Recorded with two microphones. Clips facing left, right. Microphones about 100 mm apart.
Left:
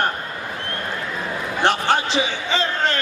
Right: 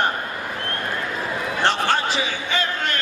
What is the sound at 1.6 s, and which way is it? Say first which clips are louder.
Speech: left 2 dB; 15° left (ahead or behind).